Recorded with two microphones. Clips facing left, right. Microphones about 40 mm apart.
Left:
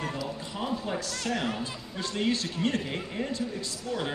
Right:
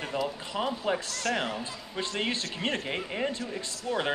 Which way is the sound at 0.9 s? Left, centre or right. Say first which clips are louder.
Right 4 dB; right.